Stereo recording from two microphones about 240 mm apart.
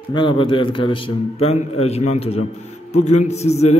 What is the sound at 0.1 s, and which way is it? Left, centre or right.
A man's voice, left.